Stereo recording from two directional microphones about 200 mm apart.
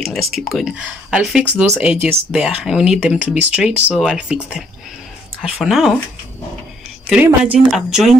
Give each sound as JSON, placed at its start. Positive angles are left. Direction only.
{"t": 0.0, "sound": "speech", "side_deg": 0}
{"t": 7.1, "sound": "speech", "side_deg": -5}